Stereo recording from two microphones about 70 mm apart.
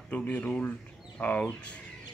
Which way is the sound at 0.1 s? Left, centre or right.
Left.